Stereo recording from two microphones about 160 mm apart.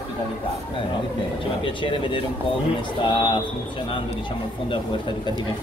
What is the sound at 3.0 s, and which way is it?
Speech, 30° left (ahead or behind).